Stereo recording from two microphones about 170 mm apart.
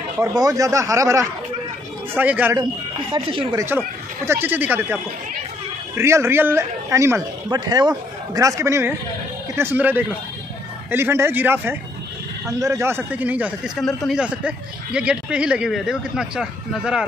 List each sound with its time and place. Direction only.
0.2 s a man's voice: 20° right (ahead or behind)
3.1 s speech: 30° right (ahead or behind)
3.5 s a man's voice: 15° right (ahead or behind)
5.9 s a man's voice: 15° right (ahead or behind)
13.7 s a man's voice: centre (ahead or behind)